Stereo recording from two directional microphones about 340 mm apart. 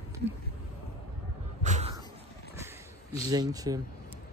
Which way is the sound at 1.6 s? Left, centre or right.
Centre.